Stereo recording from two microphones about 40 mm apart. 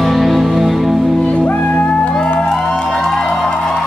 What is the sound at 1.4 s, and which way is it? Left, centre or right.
Music, left.